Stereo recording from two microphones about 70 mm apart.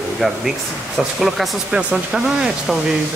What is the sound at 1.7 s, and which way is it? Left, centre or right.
Speech, centre.